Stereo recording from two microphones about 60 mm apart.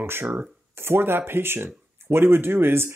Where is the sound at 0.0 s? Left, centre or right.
Right.